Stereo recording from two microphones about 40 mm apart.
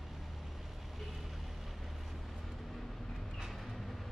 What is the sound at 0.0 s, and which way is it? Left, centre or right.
Vehicle, centre.